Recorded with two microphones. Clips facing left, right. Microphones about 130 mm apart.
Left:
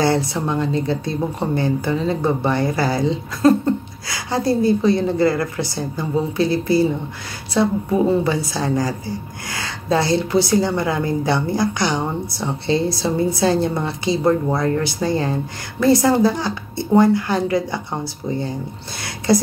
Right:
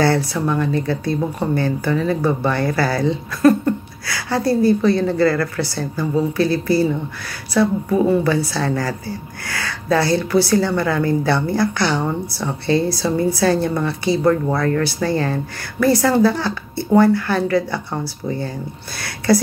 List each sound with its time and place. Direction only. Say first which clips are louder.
0.0 s speech: right 1 dB; 20° left (ahead or behind)